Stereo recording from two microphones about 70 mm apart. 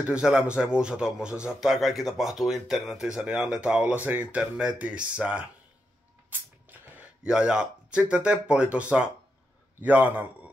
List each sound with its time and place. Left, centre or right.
0.0 s a man's voice: centre
7.2 s a man's voice: centre